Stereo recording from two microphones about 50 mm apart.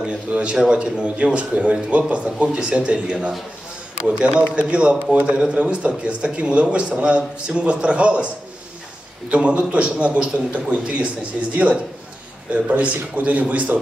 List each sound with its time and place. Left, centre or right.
0.0 s a man's voice: right
4.6 s a man's voice: right
9.3 s a man's voice: right